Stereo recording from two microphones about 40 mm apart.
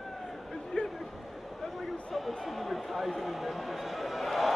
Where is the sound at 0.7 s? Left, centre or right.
Centre.